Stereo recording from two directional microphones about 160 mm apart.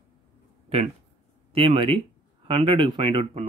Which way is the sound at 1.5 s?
35° right (ahead or behind).